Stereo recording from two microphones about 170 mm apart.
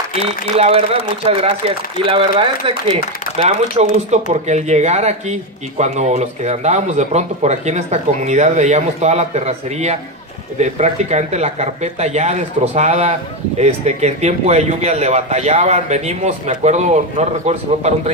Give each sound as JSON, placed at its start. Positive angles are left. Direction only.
{"t": 0.1, "sound": "speech", "side_deg": -40}